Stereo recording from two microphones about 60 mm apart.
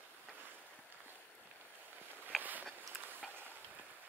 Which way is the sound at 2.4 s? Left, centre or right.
Right.